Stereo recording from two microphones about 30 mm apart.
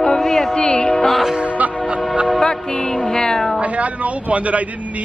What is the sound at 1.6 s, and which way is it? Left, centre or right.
Music, right.